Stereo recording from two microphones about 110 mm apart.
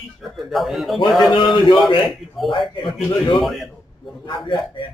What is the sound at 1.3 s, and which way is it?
Speech, 45° left (ahead or behind).